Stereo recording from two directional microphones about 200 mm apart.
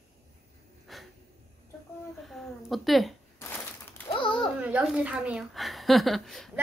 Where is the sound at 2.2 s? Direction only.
Centre (ahead or behind).